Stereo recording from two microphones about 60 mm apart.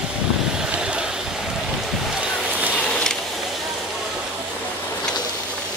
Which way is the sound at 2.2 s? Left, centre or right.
Right.